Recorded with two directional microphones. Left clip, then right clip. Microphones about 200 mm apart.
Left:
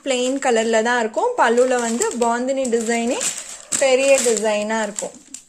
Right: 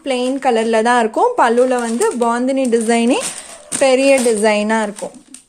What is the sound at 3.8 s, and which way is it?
Speech, 25° right (ahead or behind).